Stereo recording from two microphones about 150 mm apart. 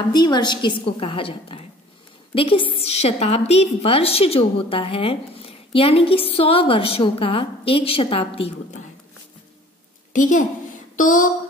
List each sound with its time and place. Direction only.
0.1 s a woman's voice: 30° left (ahead or behind)
11.0 s speech: 60° left (ahead or behind)